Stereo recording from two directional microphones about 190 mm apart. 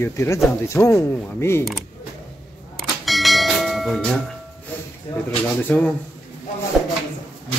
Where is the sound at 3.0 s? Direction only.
Centre (ahead or behind).